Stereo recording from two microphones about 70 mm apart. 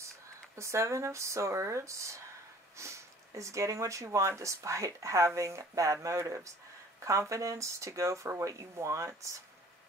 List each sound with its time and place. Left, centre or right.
0.6 s speech: right